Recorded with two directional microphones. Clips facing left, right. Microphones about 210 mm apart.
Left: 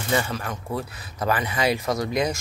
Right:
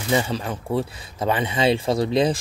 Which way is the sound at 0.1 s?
25° right (ahead or behind).